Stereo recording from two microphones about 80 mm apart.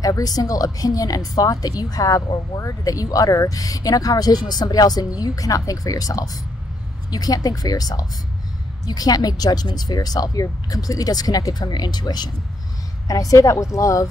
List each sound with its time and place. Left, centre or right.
0.0 s speech: left
13.1 s speech: left